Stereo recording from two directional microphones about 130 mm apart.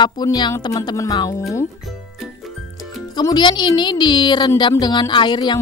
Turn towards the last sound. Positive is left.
turn(degrees=35)  # may be behind; listen again after turning